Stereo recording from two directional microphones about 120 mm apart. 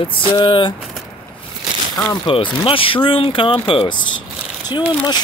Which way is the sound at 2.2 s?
50° left (ahead or behind).